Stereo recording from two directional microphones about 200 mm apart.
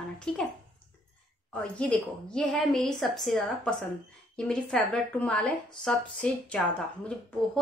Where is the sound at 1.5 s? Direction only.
5° left (ahead or behind).